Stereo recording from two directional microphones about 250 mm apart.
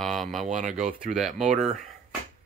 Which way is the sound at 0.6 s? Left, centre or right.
Right.